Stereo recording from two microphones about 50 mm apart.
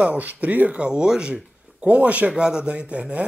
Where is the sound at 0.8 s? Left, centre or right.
Centre.